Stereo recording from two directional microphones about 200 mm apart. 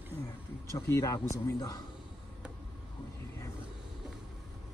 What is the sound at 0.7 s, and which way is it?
A man's voice, 15° left (ahead or behind).